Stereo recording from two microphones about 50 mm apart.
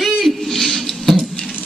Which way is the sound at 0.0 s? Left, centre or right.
Centre.